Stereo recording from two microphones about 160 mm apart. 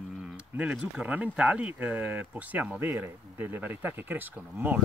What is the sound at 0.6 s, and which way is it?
Speech, 5° right (ahead or behind).